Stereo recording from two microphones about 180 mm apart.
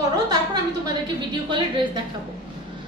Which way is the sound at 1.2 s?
25° right (ahead or behind).